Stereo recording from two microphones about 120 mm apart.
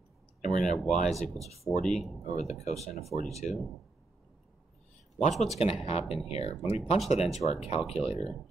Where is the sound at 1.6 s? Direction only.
5° left (ahead or behind).